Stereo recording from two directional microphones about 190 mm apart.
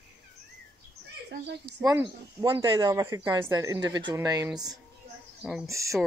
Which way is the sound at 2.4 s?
25° right (ahead or behind).